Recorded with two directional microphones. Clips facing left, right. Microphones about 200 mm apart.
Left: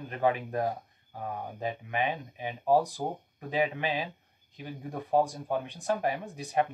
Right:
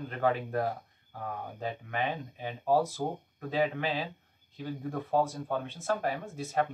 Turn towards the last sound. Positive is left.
turn(degrees=15)  # may be behind; listen again after turning